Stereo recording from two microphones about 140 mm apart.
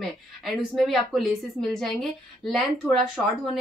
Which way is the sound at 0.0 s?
Centre (ahead or behind).